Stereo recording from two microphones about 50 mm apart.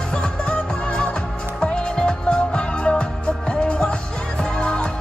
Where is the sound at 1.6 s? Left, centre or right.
Centre.